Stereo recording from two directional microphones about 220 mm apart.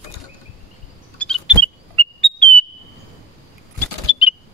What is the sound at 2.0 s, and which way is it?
Whistle, 25° right (ahead or behind).